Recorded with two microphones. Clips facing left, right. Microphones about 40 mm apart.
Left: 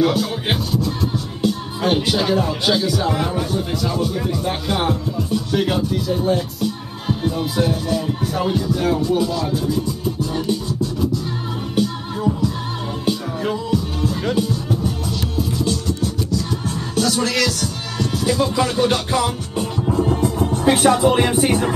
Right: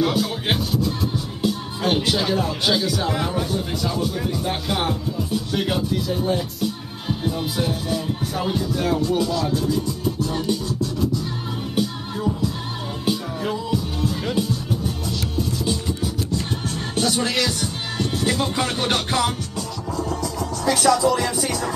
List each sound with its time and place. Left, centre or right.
0.0 s speech: centre
10.2 s music: centre
11.7 s music: centre
13.7 s music: centre
15.6 s music: centre
16.9 s music: right
18.2 s music: right